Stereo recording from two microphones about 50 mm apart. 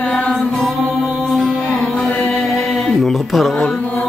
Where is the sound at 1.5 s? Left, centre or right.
Centre.